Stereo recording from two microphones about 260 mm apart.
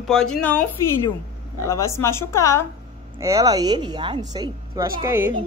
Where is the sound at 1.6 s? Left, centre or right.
Centre.